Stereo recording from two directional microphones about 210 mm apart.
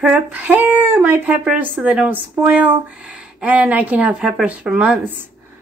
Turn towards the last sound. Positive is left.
turn(degrees=-5)  # may be behind; listen again after turning